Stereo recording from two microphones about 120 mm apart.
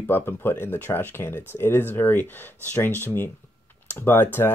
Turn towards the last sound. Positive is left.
turn(degrees=20)  # may be behind; listen again after turning